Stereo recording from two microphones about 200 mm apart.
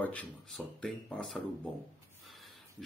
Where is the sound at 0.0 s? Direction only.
5° left (ahead or behind).